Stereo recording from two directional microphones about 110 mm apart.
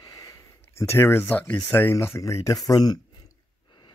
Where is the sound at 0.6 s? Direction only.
25° left (ahead or behind).